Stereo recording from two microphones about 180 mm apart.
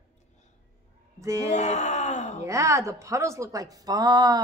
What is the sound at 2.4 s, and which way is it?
A woman's voice, 15° right (ahead or behind).